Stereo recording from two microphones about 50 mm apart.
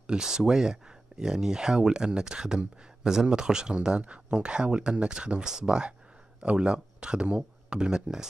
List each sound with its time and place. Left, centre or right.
0.0 s speech: centre